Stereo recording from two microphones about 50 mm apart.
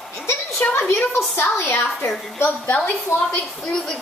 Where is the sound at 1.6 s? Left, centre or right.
Left.